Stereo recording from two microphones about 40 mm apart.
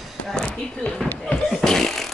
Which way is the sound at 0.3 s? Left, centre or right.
Centre.